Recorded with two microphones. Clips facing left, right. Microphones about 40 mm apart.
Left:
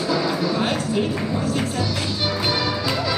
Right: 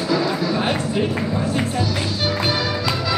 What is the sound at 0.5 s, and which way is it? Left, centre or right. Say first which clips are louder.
Speech: right 1 dB; centre.